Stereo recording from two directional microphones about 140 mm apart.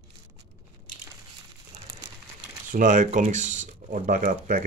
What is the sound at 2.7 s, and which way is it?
Speech, 65° right (ahead or behind).